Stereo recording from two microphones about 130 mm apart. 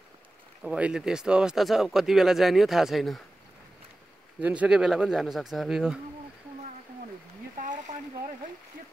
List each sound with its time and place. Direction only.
0.7 s speech: 10° right (ahead or behind)
4.4 s speech: 10° right (ahead or behind)
7.6 s a sound: 80° right